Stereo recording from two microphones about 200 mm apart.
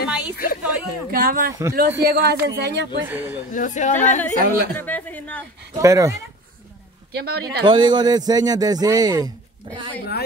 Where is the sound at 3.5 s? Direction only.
40° left (ahead or behind).